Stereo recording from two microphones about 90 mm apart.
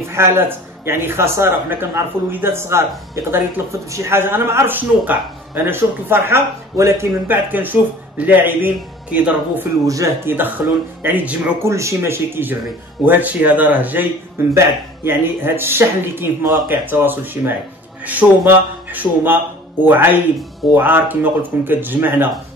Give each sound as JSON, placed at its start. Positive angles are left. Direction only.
{"t": 0.1, "sound": "a man's voice", "side_deg": -30}
{"t": 9.8, "sound": "speech", "side_deg": -40}
{"t": 10.2, "sound": "a man's voice", "side_deg": -20}
{"t": 14.5, "sound": "a man's voice", "side_deg": -30}